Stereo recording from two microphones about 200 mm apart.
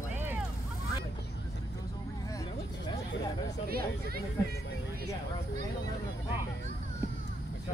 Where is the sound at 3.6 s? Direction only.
50° right (ahead or behind).